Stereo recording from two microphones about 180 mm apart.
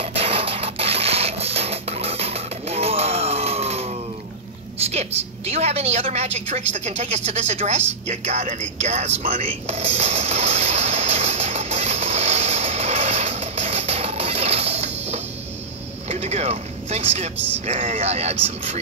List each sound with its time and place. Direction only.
0.0 s printer: 35° right (ahead or behind)
4.8 s a woman's voice: 35° right (ahead or behind)
9.3 s a sound: 30° right (ahead or behind)
16.1 s vehicle: 35° right (ahead or behind)
17.6 s a woman's voice: 40° right (ahead or behind)